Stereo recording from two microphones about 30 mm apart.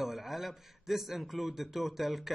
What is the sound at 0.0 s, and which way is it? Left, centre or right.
A man's voice, centre.